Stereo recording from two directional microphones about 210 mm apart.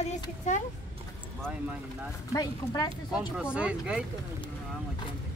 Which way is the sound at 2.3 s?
15° left (ahead or behind).